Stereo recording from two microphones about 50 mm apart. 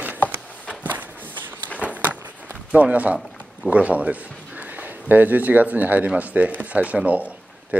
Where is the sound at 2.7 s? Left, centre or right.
Right.